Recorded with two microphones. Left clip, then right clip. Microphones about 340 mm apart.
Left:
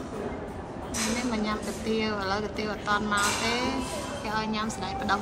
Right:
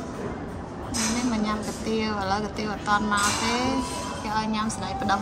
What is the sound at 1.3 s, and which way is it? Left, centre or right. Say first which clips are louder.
A woman's voice: right 2 dB; centre.